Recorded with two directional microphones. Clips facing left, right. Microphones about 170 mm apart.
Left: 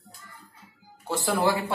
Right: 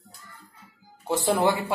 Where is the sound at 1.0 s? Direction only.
20° right (ahead or behind).